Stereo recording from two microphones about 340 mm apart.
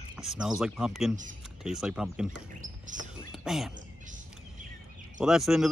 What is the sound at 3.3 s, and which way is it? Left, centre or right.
Speech, centre.